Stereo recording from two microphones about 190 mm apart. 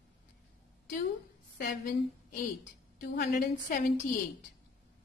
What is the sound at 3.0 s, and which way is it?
Speech, 55° left (ahead or behind).